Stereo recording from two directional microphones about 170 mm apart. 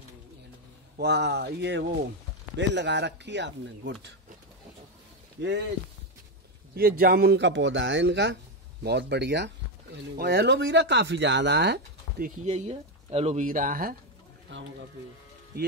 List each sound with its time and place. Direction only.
0.9 s speech: 75° right (ahead or behind)
6.7 s speech: 65° right (ahead or behind); by 9.5 s 90° right
10.1 s speech: 75° right (ahead or behind)
12.4 s speech: 40° right (ahead or behind); by 13.9 s 55° right (ahead or behind)
14.5 s speech: 90° right